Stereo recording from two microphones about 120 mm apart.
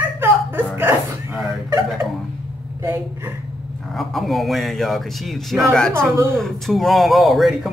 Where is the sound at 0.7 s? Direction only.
15° right (ahead or behind).